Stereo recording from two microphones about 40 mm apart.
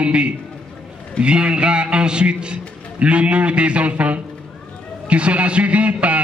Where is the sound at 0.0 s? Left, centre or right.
Right.